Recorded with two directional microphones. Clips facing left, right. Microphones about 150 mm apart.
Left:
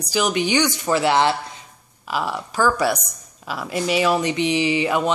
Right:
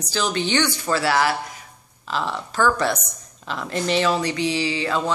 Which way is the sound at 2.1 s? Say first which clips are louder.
Left 1 dB; 10° left (ahead or behind).